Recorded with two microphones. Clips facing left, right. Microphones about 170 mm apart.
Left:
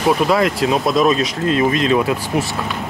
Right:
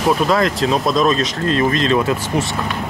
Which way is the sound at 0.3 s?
5° left (ahead or behind).